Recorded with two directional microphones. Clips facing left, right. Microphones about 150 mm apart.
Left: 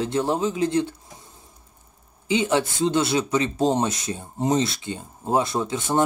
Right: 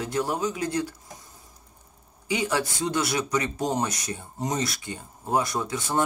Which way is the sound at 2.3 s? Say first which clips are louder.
Left 5 dB; 25° left (ahead or behind).